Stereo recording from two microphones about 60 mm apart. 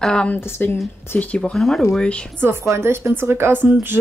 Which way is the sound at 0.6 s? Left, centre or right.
Left.